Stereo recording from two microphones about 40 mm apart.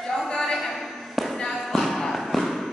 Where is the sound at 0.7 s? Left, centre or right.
Centre.